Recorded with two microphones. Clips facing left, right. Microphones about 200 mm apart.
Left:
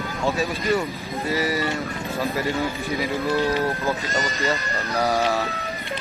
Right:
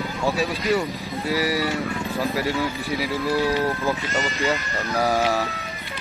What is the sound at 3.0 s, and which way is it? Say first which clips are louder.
Speech: even; 10° right (ahead or behind).